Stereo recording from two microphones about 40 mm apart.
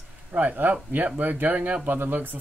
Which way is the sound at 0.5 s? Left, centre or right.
Right.